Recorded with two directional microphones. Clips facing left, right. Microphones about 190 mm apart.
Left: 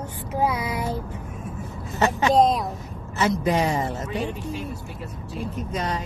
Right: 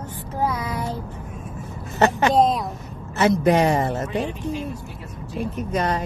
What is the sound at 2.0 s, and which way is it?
Speech, 65° right (ahead or behind).